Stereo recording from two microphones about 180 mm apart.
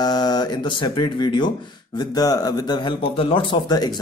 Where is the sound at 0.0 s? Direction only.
25° left (ahead or behind).